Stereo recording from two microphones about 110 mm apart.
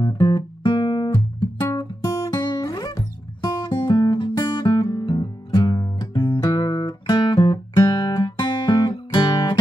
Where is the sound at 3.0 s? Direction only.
40° left (ahead or behind).